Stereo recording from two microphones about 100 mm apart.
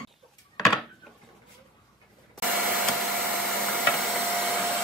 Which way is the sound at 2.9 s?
5° left (ahead or behind).